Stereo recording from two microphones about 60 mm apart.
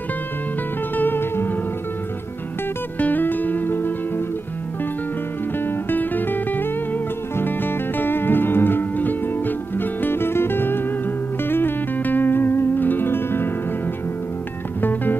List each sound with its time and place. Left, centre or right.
0.9 s music: left
3.0 s music: left
5.6 s music: left
14.8 s music: left